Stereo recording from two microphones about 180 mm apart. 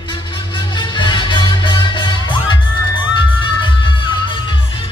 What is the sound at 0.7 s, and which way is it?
Music, 25° left (ahead or behind).